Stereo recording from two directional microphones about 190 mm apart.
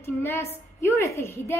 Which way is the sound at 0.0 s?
10° left (ahead or behind).